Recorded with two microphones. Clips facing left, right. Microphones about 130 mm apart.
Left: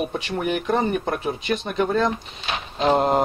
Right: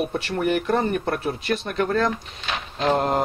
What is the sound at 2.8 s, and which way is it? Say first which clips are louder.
Speech: left 2 dB; 25° left (ahead or behind).